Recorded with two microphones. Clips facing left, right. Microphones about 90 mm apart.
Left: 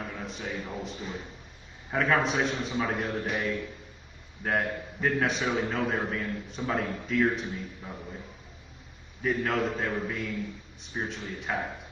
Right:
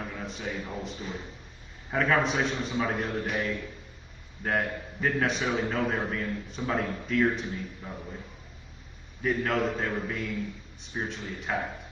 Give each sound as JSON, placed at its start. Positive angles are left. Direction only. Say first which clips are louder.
{"t": 0.0, "sound": "a man's voice", "louder": "right 1 dB", "side_deg": 0}
{"t": 9.2, "sound": "a man's voice", "louder": "right 1 dB", "side_deg": 0}